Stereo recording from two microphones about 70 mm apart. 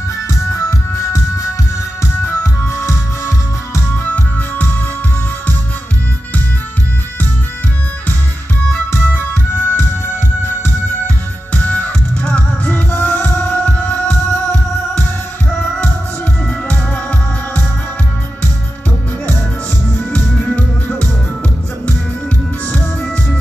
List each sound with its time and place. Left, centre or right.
0.5 s music: left
2.2 s music: left
3.9 s music: left
8.9 s music: left
11.5 s music: left
20.0 s music: left